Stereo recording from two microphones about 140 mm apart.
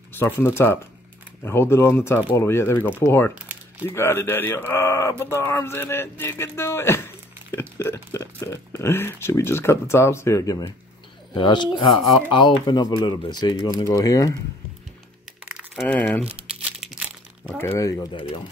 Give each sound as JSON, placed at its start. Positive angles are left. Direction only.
{"t": 0.2, "sound": "speech", "side_deg": 15}
{"t": 11.3, "sound": "speech", "side_deg": 35}
{"t": 15.4, "sound": "a sound", "side_deg": -5}
{"t": 17.6, "sound": "speech", "side_deg": 20}
{"t": 18.1, "sound": "speech", "side_deg": 40}